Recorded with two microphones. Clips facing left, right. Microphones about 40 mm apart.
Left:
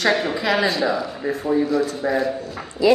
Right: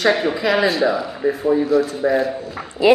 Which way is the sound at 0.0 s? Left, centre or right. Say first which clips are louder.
Right 3 dB; centre.